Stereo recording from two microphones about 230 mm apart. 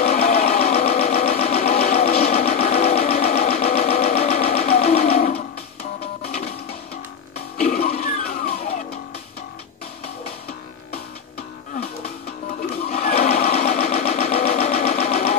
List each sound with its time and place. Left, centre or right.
0.0 s a sound: left
6.2 s music: left
7.5 s music: left
12.9 s engine: left